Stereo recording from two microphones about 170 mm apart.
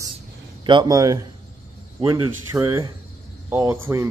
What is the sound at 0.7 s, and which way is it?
A man's voice, 25° right (ahead or behind).